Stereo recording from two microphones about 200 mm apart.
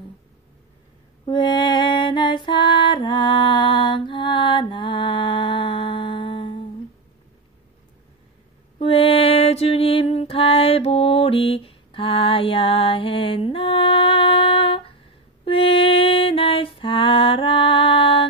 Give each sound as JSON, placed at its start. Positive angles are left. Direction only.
{"t": 1.2, "sound": "mantra", "side_deg": 25}
{"t": 8.7, "sound": "mantra", "side_deg": 30}
{"t": 15.4, "sound": "music", "side_deg": 25}